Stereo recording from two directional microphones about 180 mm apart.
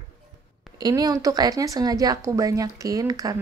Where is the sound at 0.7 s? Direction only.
20° right (ahead or behind).